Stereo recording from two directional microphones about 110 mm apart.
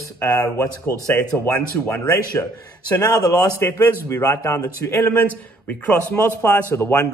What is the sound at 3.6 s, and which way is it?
Speech, 30° left (ahead or behind).